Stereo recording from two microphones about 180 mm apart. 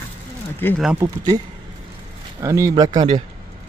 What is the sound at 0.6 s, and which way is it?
Speech, 10° left (ahead or behind).